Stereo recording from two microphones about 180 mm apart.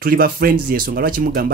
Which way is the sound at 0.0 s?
55° right (ahead or behind).